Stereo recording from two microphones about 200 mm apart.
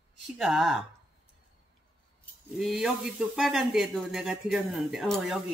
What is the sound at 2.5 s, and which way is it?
Speech, centre (ahead or behind).